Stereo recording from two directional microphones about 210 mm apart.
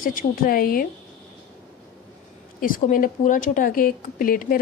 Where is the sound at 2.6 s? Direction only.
40° left (ahead or behind).